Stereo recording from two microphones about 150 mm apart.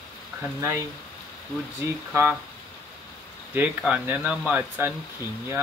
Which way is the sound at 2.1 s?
10° right (ahead or behind).